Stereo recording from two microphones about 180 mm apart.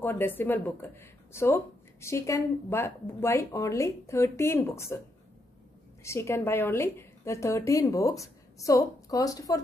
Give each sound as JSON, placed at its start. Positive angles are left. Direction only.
{"t": 0.0, "sound": "a woman's voice", "side_deg": 10}
{"t": 6.0, "sound": "a woman's voice", "side_deg": 15}